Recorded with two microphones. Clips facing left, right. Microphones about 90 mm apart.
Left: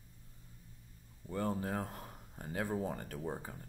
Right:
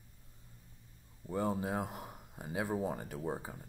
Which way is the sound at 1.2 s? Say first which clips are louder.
Right 2 dB; 15° right (ahead or behind).